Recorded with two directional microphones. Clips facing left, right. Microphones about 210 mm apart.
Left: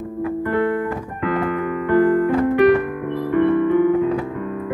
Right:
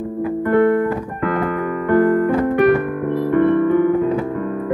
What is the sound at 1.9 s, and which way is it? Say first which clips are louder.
Keyboard: right 1 dB; 50° right (ahead or behind).